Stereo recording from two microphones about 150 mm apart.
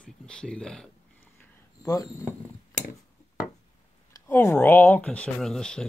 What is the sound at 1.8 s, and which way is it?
Speech, 25° left (ahead or behind).